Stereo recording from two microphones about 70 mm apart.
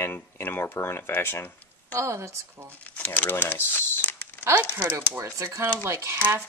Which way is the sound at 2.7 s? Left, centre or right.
Left.